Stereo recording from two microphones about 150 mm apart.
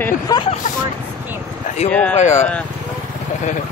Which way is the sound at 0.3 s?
25° left (ahead or behind).